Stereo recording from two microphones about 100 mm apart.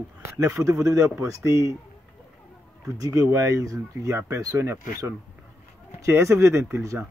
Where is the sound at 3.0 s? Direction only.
35° right (ahead or behind).